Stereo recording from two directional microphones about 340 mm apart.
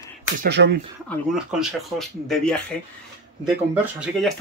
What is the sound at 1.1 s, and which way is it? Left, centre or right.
Speech, centre.